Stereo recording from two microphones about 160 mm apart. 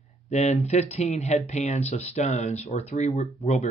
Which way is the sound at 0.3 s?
45° left (ahead or behind).